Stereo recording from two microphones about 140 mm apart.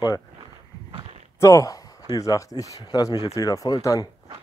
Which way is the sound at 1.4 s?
25° left (ahead or behind).